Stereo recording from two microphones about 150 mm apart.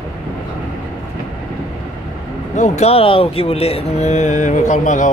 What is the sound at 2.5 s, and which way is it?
Speech, 50° left (ahead or behind).